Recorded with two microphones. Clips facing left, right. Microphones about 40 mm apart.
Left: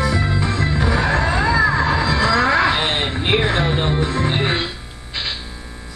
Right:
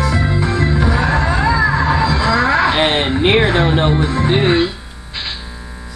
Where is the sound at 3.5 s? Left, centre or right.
Right.